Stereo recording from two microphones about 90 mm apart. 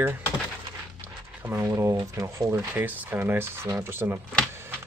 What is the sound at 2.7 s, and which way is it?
Speech, 20° right (ahead or behind).